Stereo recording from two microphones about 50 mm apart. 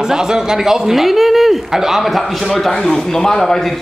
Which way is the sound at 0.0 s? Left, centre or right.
Centre.